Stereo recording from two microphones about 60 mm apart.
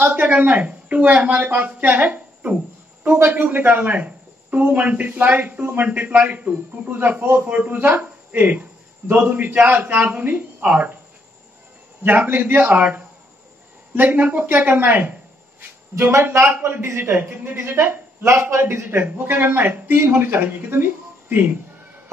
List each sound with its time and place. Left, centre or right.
0.0 s a woman's voice: right
12.0 s speech: right
13.9 s speech: right
16.0 s a man's voice: right
17.2 s speech: right
17.6 s a man's voice: right